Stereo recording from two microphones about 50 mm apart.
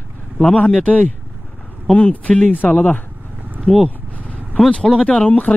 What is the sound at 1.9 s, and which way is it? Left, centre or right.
Speech, left.